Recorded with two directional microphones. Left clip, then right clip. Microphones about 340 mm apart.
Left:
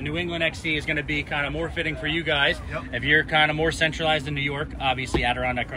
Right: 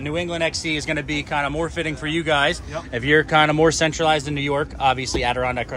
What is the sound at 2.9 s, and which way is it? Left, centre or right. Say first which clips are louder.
Speech: right 3 dB; right.